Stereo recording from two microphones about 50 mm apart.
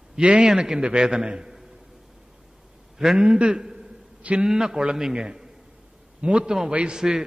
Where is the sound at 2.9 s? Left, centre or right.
Centre.